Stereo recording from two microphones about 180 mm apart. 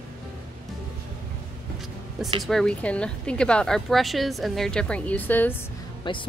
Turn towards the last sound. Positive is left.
turn(degrees=25)  # may be behind; listen again after turning